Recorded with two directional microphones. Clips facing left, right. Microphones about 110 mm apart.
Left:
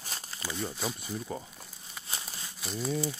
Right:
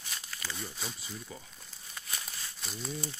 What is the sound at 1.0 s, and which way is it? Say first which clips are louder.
Speech: left 8 dB; 45° left (ahead or behind).